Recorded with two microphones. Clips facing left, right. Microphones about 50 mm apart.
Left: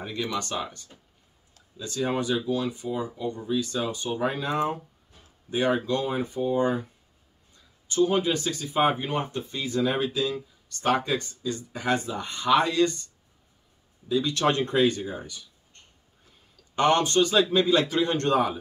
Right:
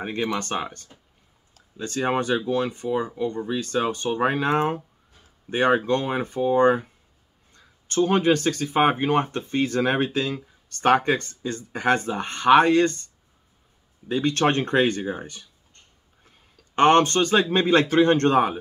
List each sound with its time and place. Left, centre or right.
0.0 s speech: right
16.7 s speech: right